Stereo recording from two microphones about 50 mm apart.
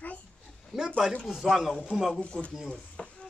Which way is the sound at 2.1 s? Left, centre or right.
Left.